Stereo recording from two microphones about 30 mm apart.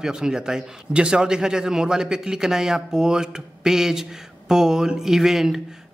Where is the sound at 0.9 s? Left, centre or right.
Right.